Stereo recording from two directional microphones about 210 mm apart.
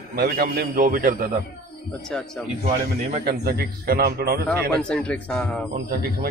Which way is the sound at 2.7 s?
40° right (ahead or behind).